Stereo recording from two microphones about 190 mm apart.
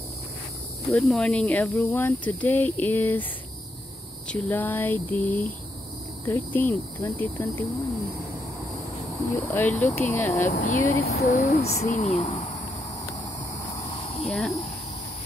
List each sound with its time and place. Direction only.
0.9 s speech: 5° left (ahead or behind)
4.3 s speech: 10° left (ahead or behind)
9.5 s speech: 10° left (ahead or behind)
10.5 s speech: 45° left (ahead or behind)
11.6 s speech: 35° left (ahead or behind)
14.2 s speech: centre (ahead or behind)